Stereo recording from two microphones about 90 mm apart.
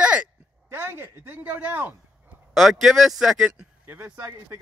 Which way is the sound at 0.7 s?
25° right (ahead or behind).